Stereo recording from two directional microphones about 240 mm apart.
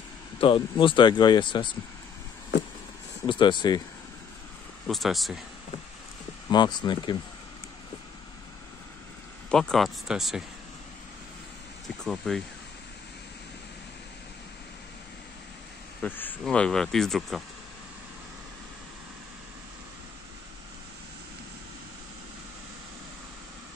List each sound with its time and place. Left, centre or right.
0.4 s speech: left
3.3 s speech: centre
4.8 s speech: centre
6.5 s speech: centre
9.5 s speech: centre
12.0 s speech: centre
16.0 s speech: centre